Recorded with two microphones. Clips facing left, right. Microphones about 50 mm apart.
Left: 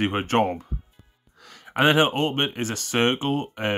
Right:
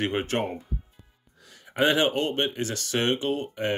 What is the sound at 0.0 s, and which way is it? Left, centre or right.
Speech, left.